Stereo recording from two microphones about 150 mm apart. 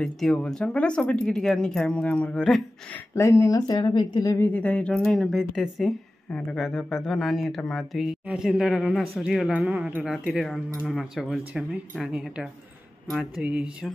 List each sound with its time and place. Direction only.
0.0 s speech: 5° left (ahead or behind)
3.2 s speech: 20° left (ahead or behind)
4.4 s speech: 10° left (ahead or behind); by 13.9 s 10° right (ahead or behind)